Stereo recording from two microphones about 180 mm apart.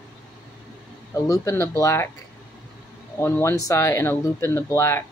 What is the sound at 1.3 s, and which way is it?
Speech, 15° left (ahead or behind).